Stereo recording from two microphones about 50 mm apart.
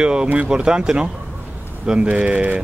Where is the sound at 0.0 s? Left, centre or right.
Centre.